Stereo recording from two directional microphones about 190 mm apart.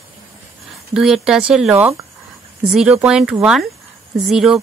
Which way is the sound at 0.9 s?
5° right (ahead or behind).